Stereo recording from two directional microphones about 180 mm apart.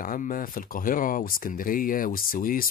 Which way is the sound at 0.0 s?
50° left (ahead or behind).